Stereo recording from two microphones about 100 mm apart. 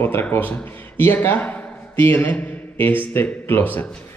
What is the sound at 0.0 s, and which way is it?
A man's voice, 20° left (ahead or behind).